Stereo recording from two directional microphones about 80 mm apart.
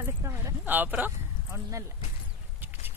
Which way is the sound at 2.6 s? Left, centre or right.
Right.